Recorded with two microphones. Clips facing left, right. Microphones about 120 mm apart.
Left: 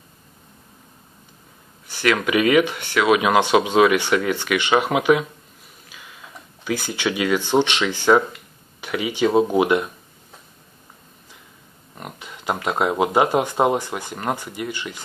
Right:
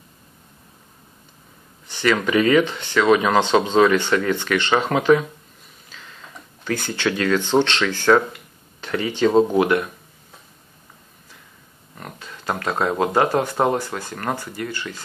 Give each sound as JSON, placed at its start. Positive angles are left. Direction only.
{"t": 1.9, "sound": "speech", "side_deg": 5}
{"t": 12.0, "sound": "speech", "side_deg": 15}